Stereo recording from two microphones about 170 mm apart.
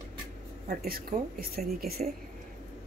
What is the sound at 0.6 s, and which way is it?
A woman's voice, 60° right (ahead or behind).